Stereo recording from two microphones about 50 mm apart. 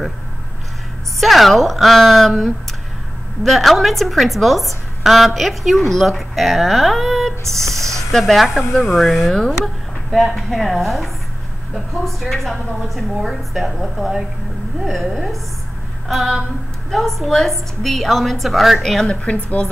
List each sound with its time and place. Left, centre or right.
1.2 s a woman's voice: centre
9.3 s a woman's voice: centre
19.0 s a woman's voice: left